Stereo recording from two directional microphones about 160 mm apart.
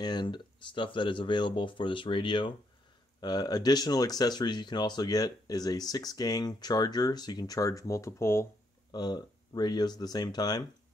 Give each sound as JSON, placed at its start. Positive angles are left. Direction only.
{"t": 0.0, "sound": "speech", "side_deg": 25}